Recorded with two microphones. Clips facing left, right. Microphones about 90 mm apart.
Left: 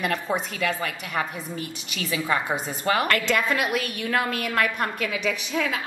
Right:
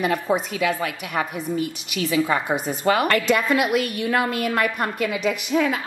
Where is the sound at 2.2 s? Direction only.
15° right (ahead or behind).